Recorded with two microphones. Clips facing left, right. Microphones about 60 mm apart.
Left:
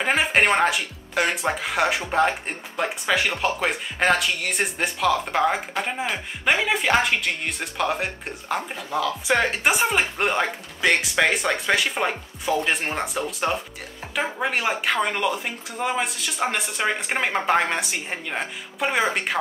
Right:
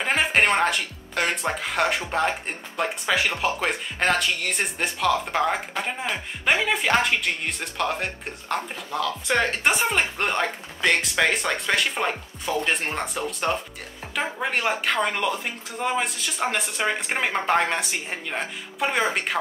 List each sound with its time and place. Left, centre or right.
0.0 s speech: centre